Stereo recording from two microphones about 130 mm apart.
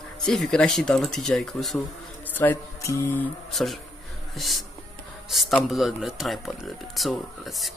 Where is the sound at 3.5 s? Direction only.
Centre (ahead or behind).